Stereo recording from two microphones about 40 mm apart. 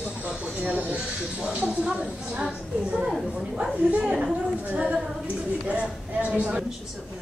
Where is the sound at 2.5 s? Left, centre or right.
Right.